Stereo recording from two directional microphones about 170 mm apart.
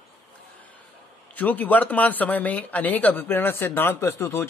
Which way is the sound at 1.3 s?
10° left (ahead or behind).